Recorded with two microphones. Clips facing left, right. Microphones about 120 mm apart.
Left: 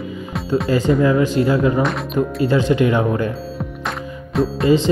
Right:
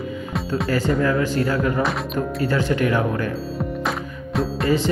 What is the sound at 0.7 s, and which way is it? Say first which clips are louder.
Speech: left 4 dB; 15° left (ahead or behind).